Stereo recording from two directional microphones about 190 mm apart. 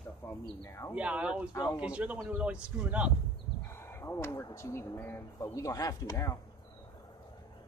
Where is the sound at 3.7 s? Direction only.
15° left (ahead or behind).